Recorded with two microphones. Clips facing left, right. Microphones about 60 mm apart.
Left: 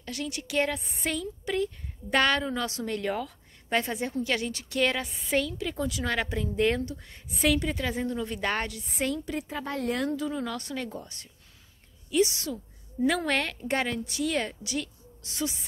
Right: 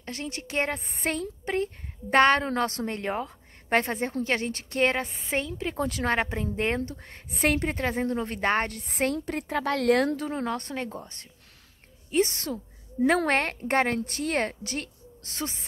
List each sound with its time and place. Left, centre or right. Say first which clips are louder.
0.0 s a woman's voice: even; right
2.9 s a woman's voice: even; right
6.1 s a woman's voice: right 1 dB; right
7.2 s a woman's voice: even; right
10.4 s a woman's voice: right 3 dB; right